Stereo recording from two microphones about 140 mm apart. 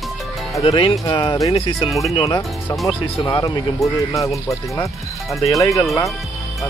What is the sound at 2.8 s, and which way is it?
Speech, 25° left (ahead or behind).